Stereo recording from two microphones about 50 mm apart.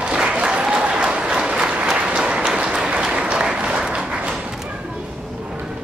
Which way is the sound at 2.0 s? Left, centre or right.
Right.